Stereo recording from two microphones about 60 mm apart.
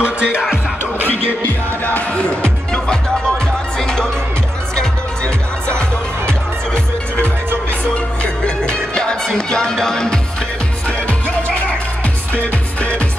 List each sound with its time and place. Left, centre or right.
0.0 s music: centre
1.0 s music: left
2.4 s music: centre
7.9 s music: centre
11.1 s music: left